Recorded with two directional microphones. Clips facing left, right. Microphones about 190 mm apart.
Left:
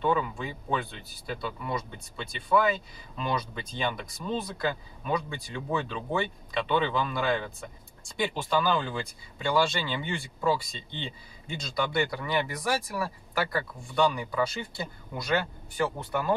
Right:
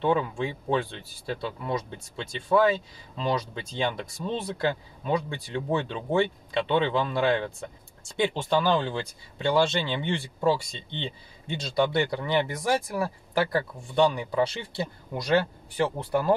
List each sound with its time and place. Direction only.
0.0 s speech: 30° right (ahead or behind)
3.2 s speech: 25° right (ahead or behind)